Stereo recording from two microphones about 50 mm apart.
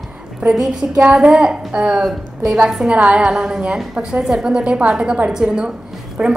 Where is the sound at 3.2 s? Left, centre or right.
Centre.